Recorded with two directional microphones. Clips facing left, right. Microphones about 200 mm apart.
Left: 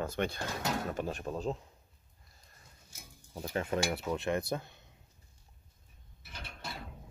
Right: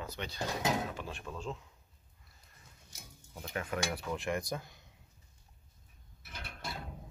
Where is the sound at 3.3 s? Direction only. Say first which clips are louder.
Left 4 dB; 25° left (ahead or behind).